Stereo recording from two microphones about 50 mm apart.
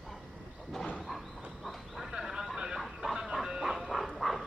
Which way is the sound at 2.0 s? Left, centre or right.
Centre.